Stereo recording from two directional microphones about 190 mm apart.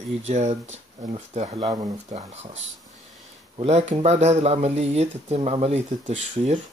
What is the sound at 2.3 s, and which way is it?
Speech, 35° right (ahead or behind).